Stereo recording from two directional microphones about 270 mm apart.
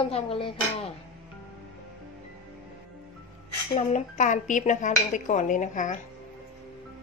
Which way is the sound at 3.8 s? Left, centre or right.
Left.